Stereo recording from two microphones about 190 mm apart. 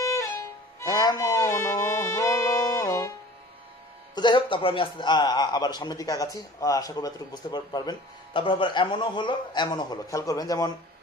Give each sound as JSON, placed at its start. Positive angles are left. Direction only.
{"t": 0.0, "sound": "violin", "side_deg": 15}
{"t": 4.1, "sound": "a man's voice", "side_deg": 25}